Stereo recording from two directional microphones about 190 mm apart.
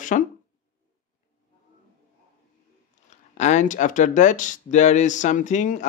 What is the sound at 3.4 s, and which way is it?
Speech, 40° left (ahead or behind).